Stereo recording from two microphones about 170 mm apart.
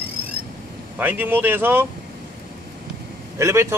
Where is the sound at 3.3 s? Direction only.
15° right (ahead or behind).